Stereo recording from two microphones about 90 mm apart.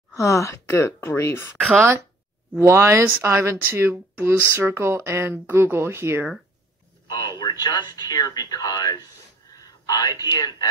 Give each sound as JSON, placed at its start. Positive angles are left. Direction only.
{"t": 0.1, "sound": "speech", "side_deg": 35}
{"t": 1.6, "sound": "speech", "side_deg": 0}
{"t": 2.6, "sound": "speech", "side_deg": -30}
{"t": 7.1, "sound": "a man's voice", "side_deg": 50}